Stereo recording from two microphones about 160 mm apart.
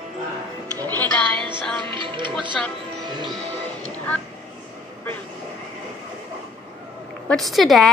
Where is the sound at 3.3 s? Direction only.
10° left (ahead or behind).